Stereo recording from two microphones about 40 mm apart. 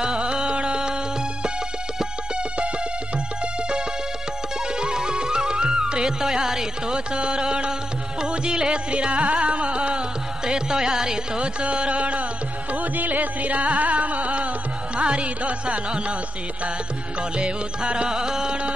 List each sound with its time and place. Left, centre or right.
0.0 s music: right
4.7 s music: centre
10.4 s music: centre
12.7 s music: right
17.4 s music: right
18.1 s music: centre